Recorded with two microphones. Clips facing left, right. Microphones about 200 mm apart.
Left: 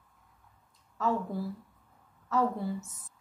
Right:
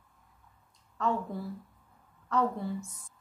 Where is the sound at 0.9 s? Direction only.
5° left (ahead or behind).